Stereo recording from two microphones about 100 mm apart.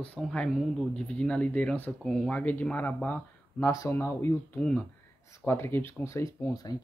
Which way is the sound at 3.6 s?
30° left (ahead or behind).